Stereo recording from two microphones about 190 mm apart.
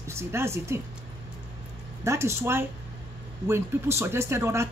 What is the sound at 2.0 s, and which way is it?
A woman's voice, 15° right (ahead or behind).